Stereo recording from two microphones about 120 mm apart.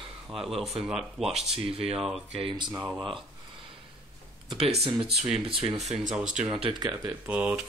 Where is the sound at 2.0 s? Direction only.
5° right (ahead or behind).